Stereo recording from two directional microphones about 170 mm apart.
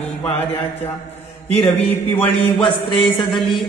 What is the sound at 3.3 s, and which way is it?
Speech, centre (ahead or behind).